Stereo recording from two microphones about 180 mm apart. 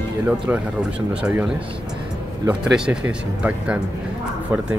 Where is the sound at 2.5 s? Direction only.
5° right (ahead or behind).